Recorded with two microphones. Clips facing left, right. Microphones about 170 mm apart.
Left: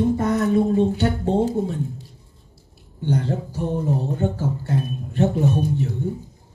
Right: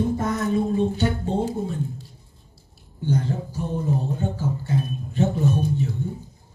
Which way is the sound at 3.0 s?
70° left (ahead or behind).